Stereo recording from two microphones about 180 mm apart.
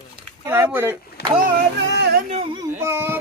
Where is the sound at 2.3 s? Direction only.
30° right (ahead or behind).